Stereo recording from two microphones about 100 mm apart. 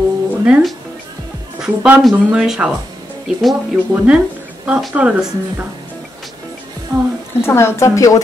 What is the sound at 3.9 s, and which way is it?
Speech, 15° right (ahead or behind).